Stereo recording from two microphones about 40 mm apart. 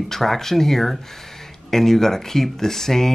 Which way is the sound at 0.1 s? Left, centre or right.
Centre.